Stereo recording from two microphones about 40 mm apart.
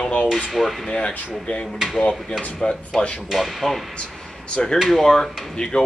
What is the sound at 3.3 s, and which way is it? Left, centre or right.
Speech, centre.